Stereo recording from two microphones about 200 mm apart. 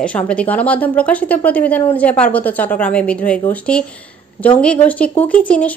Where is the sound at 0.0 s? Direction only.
5° left (ahead or behind).